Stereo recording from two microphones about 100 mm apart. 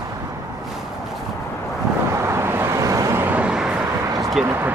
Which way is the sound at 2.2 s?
25° right (ahead or behind).